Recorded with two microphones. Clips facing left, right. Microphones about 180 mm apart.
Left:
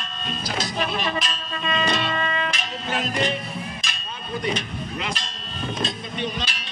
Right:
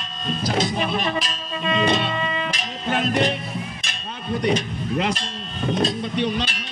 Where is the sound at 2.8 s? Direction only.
55° right (ahead or behind).